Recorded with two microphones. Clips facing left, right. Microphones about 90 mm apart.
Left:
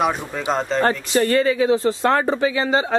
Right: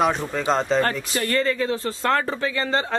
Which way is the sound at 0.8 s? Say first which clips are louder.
Left 5 dB; 15° left (ahead or behind).